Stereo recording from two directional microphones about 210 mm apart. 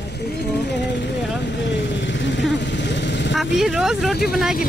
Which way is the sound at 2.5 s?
55° left (ahead or behind).